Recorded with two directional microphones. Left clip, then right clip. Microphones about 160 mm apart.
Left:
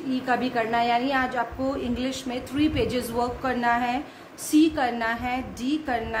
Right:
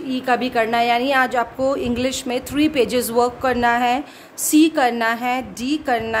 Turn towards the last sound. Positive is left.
turn(degrees=-90)